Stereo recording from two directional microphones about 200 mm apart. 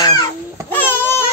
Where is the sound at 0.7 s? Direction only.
10° left (ahead or behind).